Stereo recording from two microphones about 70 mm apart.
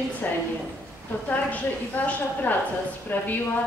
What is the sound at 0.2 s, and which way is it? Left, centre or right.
Speech, left.